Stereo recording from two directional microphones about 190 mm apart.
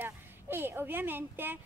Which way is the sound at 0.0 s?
10° right (ahead or behind).